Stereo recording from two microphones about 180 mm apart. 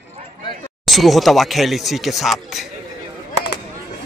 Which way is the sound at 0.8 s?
Centre (ahead or behind).